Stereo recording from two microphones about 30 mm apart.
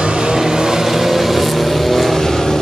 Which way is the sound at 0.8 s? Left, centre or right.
Centre.